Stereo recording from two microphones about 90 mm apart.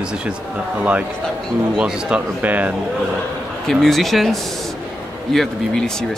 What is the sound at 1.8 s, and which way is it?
Speech, 10° right (ahead or behind).